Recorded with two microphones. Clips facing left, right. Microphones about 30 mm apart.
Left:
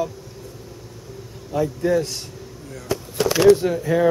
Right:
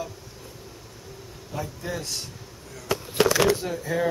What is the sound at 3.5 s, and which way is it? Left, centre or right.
Speech, left.